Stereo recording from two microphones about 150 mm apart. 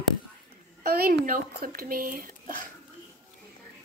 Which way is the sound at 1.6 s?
80° right.